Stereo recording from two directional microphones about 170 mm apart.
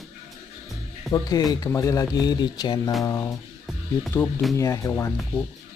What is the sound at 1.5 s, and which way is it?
Speech, 20° left (ahead or behind).